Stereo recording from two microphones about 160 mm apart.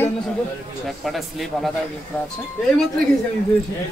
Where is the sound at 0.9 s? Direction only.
Centre (ahead or behind).